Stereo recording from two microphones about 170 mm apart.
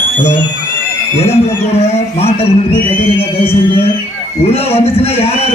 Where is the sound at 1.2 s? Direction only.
40° left (ahead or behind).